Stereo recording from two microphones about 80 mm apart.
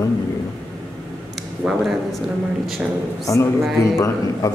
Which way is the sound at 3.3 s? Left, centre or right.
Left.